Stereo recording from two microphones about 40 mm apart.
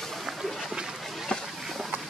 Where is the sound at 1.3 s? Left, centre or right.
Left.